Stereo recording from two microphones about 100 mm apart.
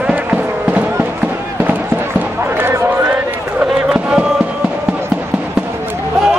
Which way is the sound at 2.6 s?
25° right (ahead or behind).